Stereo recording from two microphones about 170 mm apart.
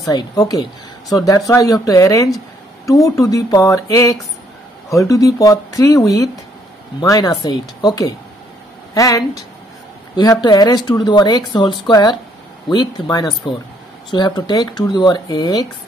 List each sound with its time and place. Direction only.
0.0 s speech: 20° left (ahead or behind)